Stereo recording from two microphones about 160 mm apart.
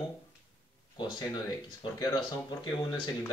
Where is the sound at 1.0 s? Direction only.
25° left (ahead or behind).